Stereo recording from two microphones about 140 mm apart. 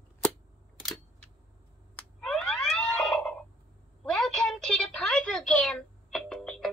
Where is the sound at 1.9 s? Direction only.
5° left (ahead or behind).